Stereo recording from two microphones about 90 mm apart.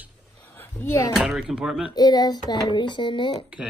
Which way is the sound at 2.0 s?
45° left (ahead or behind).